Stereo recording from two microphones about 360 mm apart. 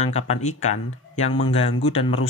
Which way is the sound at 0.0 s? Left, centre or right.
Centre.